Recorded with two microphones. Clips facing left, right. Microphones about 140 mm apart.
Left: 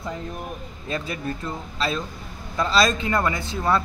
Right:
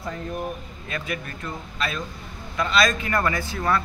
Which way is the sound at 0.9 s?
30° left (ahead or behind).